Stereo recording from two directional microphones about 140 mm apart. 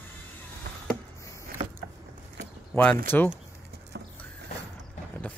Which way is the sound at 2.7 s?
20° left (ahead or behind).